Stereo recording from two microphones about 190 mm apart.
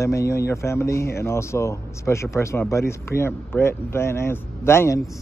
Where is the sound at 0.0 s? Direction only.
15° left (ahead or behind).